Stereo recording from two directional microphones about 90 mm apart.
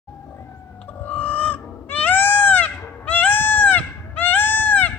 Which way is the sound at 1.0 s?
20° left (ahead or behind).